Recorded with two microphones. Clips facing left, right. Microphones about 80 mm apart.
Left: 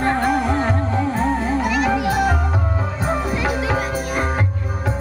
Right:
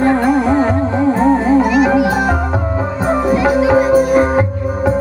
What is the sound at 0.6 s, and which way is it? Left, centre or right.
Music, right.